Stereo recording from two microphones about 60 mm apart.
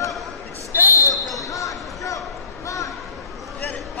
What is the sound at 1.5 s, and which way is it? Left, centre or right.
Basketball bounce, left.